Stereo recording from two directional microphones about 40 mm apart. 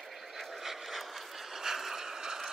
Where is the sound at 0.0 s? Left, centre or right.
Centre.